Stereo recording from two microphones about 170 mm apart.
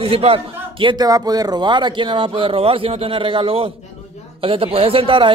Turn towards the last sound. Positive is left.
turn(degrees=-30)  # may be behind; listen again after turning